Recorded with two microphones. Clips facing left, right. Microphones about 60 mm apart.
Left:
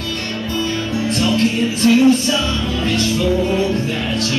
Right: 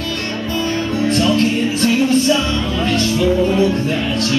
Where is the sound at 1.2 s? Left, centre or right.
Right.